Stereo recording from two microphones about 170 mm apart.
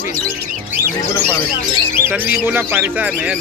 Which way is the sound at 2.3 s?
10° right (ahead or behind).